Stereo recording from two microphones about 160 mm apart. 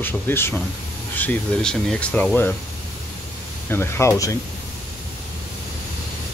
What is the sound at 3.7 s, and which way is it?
Speech, 15° left (ahead or behind).